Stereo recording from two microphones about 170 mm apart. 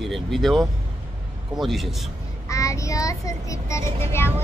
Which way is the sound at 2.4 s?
20° left (ahead or behind).